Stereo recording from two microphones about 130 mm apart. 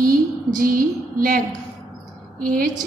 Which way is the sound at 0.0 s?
90° right.